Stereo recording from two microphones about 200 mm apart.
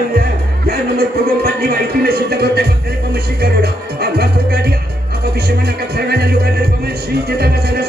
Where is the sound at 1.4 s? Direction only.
50° right (ahead or behind).